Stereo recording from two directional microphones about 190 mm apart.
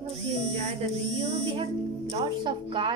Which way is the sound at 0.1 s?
35° right (ahead or behind).